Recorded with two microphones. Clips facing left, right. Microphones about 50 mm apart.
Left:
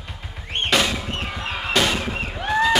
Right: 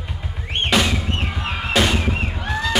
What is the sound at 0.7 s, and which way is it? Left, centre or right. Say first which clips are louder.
Drum: right 1 dB; centre.